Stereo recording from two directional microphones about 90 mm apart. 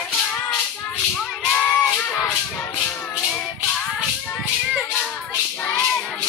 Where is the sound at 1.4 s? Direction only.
10° left (ahead or behind).